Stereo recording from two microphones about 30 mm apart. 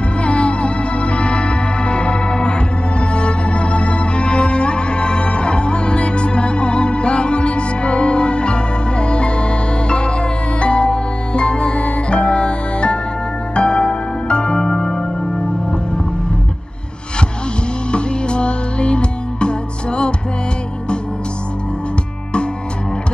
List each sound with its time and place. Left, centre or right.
0.2 s music: left
17.9 s music: left